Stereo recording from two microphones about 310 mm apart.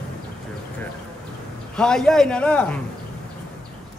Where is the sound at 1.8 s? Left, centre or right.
Centre.